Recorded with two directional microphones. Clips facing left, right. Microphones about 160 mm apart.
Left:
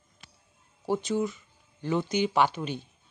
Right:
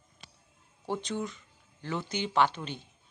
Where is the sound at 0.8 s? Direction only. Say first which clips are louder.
Left 6 dB; 10° left (ahead or behind).